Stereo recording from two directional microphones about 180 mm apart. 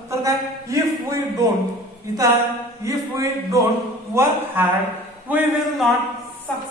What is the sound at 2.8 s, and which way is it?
A man's voice, 15° right (ahead or behind).